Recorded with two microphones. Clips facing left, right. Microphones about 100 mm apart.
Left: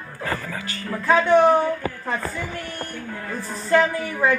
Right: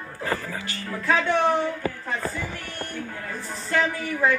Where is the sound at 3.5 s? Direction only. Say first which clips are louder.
Left 6 dB; 45° left (ahead or behind).